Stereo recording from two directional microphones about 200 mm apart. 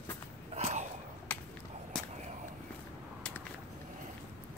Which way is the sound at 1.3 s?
10° left (ahead or behind).